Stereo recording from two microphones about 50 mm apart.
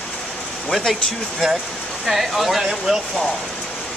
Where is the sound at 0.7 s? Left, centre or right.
Centre.